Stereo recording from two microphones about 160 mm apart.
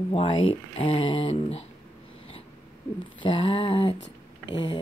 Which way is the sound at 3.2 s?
30° left (ahead or behind).